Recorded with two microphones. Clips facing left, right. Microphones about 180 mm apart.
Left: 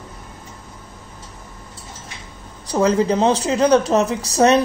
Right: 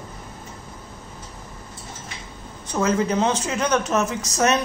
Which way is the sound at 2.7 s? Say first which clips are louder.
Left 5 dB; 35° left (ahead or behind).